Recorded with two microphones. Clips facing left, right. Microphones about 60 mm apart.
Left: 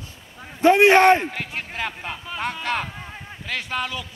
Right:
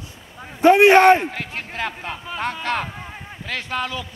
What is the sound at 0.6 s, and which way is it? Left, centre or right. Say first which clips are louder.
Speech: right 2 dB; right.